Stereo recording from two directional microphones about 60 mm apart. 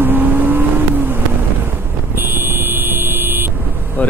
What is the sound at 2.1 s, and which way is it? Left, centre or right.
Vehicle, right.